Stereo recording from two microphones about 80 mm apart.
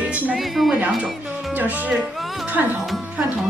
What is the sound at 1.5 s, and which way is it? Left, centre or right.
A woman's voice, right.